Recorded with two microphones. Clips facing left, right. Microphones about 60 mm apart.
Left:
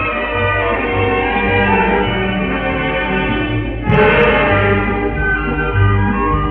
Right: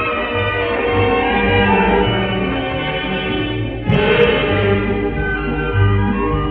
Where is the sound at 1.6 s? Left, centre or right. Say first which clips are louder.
Left 1 dB; left.